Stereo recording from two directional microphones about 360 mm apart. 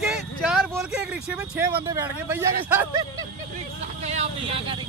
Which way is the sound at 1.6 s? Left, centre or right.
Centre.